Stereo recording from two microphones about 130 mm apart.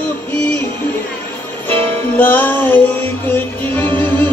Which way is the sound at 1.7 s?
15° left (ahead or behind).